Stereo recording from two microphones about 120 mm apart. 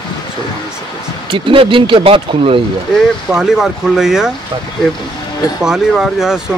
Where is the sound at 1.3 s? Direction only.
45° right (ahead or behind).